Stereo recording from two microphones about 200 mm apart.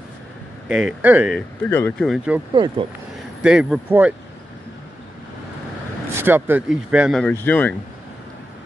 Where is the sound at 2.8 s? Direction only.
25° right (ahead or behind).